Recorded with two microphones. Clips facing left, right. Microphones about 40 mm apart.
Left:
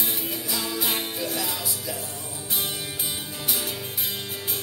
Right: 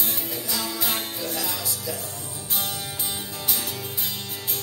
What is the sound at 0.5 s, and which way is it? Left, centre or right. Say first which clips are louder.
Music: even; centre.